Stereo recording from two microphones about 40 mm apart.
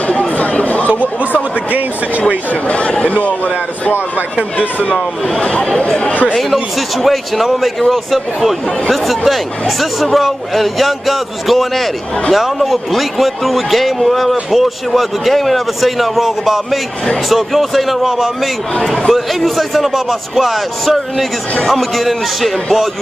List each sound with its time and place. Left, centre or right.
0.4 s a sound: left
1.7 s speech: right
2.2 s speech: left
4.6 s speech: left
5.4 s speech: left
6.3 s a man's voice: centre
17.3 s a man's voice: centre
18.0 s a man's voice: centre
18.8 s a man's voice: centre